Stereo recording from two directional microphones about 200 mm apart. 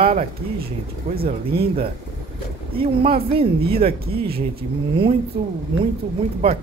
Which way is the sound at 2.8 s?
30° right (ahead or behind).